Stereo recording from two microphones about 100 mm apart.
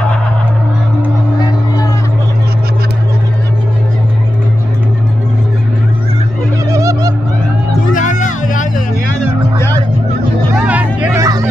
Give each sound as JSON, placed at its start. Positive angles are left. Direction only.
{"t": 6.7, "sound": "a sound", "side_deg": -35}
{"t": 10.6, "sound": "vehicle", "side_deg": -15}
{"t": 11.1, "sound": "hubbub", "side_deg": -35}